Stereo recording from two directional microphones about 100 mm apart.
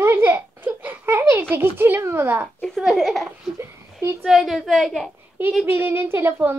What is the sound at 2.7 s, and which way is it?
Speech, centre (ahead or behind).